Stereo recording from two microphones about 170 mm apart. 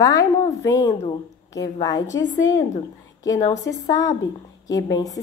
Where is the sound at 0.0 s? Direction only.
20° left (ahead or behind).